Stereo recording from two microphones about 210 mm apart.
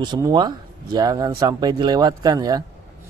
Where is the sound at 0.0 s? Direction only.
20° right (ahead or behind).